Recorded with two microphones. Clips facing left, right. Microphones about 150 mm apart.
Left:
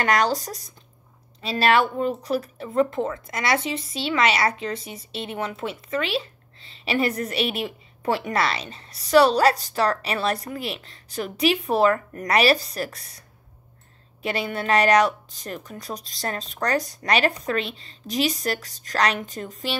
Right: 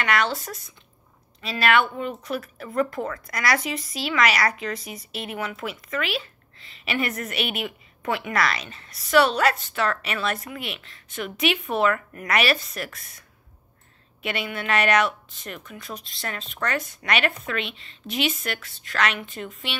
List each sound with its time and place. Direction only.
0.0 s speech: 35° left (ahead or behind)
14.2 s speech: 35° left (ahead or behind)